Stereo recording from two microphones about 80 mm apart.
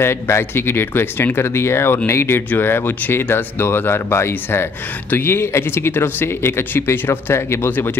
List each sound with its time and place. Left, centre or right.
0.0 s speech: left